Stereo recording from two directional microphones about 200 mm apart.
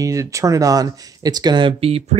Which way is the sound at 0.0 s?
15° right (ahead or behind).